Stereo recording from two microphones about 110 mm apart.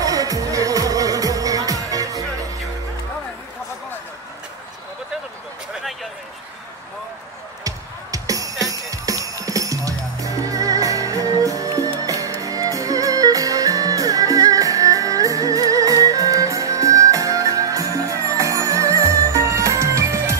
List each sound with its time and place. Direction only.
0.0 s music: 30° right (ahead or behind)
7.6 s music: 30° right (ahead or behind)